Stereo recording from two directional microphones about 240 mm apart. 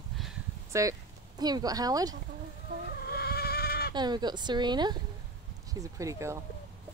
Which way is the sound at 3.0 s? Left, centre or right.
Left.